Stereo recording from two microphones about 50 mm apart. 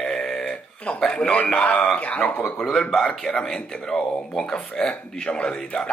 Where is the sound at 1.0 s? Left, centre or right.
Centre.